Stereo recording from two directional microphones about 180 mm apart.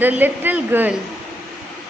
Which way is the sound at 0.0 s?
10° right (ahead or behind).